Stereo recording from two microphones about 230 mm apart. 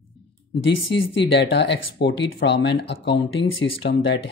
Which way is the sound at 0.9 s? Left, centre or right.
Left.